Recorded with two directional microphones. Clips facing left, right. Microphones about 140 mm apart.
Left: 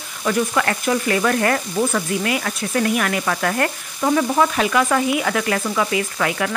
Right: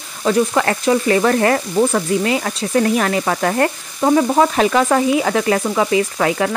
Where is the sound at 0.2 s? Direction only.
30° right (ahead or behind).